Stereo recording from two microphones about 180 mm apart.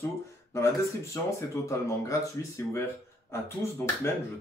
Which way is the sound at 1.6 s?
15° left (ahead or behind).